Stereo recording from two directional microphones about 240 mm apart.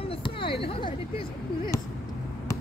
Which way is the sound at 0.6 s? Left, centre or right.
Left.